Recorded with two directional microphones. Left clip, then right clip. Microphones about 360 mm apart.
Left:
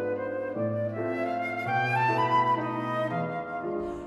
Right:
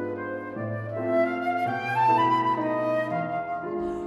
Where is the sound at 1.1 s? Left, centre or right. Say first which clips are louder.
Right 6 dB; centre.